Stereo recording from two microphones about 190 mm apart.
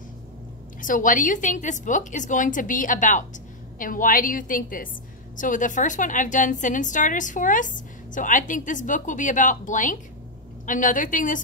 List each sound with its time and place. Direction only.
0.7 s a woman's voice: 45° left (ahead or behind)